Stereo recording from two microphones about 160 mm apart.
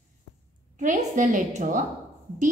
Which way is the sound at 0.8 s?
50° right (ahead or behind).